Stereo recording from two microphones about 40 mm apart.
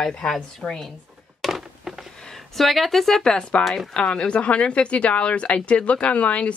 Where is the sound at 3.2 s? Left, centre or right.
Left.